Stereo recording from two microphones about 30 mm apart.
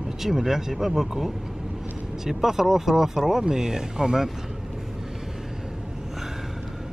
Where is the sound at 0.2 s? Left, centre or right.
Centre.